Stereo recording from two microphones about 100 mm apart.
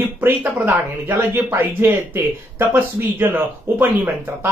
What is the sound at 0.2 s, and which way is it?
Speech, 20° right (ahead or behind).